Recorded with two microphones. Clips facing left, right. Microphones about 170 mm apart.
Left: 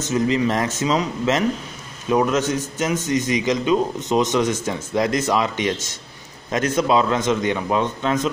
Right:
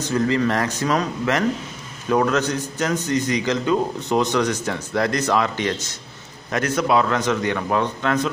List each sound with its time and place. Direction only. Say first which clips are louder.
0.1 s a man's voice: even; 15° left (ahead or behind)